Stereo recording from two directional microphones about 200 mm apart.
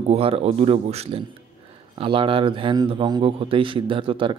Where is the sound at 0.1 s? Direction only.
30° right (ahead or behind).